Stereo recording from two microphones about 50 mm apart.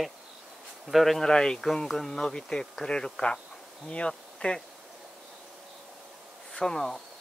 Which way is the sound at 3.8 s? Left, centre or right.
Left.